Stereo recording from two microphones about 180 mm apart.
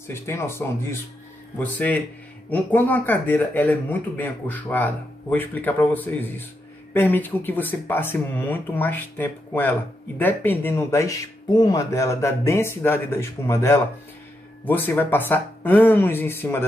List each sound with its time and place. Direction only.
0.1 s speech: 15° left (ahead or behind)